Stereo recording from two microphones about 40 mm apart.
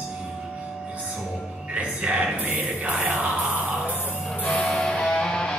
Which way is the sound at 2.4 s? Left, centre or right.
Right.